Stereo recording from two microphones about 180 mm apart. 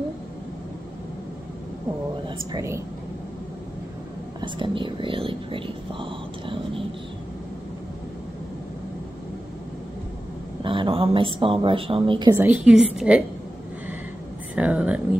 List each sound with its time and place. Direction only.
2.2 s speech: 20° right (ahead or behind)
4.4 s speech: 25° right (ahead or behind)
10.6 s speech: 30° right (ahead or behind)
12.4 s a woman's voice: 10° right (ahead or behind)
14.5 s speech: 5° right (ahead or behind)